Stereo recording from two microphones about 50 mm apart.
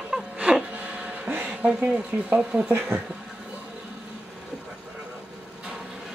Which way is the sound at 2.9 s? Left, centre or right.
Right.